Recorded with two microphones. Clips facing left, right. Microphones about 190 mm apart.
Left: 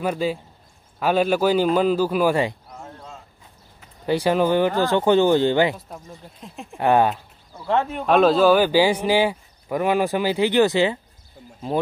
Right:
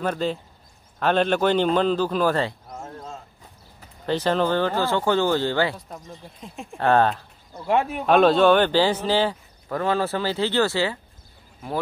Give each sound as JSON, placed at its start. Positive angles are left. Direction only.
{"t": 0.0, "sound": "speech", "side_deg": 10}
{"t": 2.7, "sound": "a sound", "side_deg": -45}
{"t": 4.0, "sound": "speech", "side_deg": 10}
{"t": 5.9, "sound": "speech", "side_deg": 5}
{"t": 6.8, "sound": "speech", "side_deg": 10}
{"t": 7.5, "sound": "speech", "side_deg": -10}